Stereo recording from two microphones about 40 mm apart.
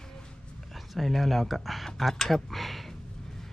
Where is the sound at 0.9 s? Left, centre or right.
Centre.